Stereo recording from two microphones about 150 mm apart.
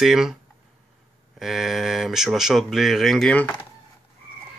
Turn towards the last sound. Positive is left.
turn(degrees=10)  # may be behind; listen again after turning